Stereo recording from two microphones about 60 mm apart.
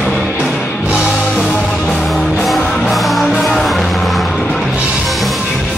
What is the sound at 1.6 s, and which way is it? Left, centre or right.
Music, centre.